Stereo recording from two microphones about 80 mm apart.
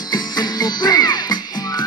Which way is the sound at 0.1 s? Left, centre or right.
Left.